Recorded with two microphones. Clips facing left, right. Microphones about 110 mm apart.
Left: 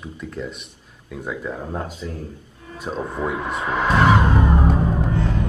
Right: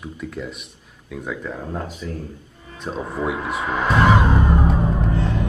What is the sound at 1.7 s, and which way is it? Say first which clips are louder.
Speech: even; 20° left (ahead or behind).